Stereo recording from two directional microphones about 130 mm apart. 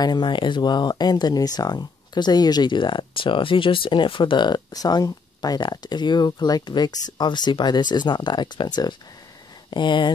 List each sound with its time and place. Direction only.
0.0 s speech: 35° left (ahead or behind)